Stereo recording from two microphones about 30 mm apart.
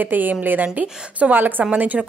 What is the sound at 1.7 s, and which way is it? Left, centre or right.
Speech, right.